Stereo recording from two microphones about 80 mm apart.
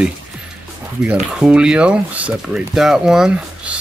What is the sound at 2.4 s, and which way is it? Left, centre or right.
Speech, centre.